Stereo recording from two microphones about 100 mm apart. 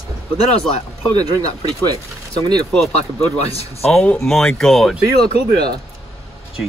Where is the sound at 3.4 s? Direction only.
90° left.